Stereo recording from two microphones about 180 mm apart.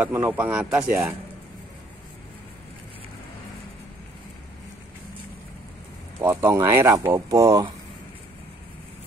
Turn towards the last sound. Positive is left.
turn(degrees=-20)  # may be behind; listen again after turning